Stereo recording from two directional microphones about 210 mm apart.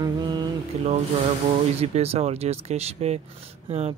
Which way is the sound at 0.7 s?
30° right (ahead or behind).